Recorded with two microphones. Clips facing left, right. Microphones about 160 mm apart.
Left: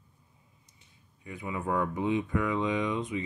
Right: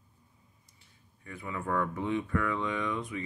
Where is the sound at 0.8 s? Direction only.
15° left (ahead or behind).